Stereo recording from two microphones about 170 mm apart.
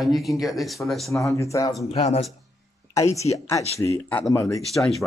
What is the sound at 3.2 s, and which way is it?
Speech, 40° left (ahead or behind).